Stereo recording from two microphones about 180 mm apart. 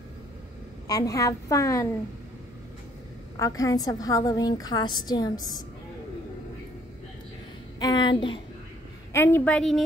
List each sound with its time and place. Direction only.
0.8 s a woman's voice: 20° left (ahead or behind)
3.3 s a woman's voice: 20° left (ahead or behind)
7.8 s a woman's voice: 25° left (ahead or behind)
9.1 s a woman's voice: 10° left (ahead or behind)